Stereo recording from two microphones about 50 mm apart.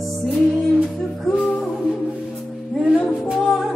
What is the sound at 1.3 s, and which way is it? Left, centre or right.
Music, left.